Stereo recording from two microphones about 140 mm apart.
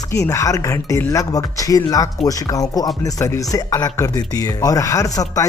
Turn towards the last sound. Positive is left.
turn(degrees=25)  # may be behind; listen again after turning